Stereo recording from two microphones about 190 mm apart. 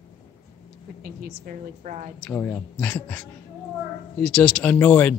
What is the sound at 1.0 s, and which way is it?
Speech, 45° right (ahead or behind).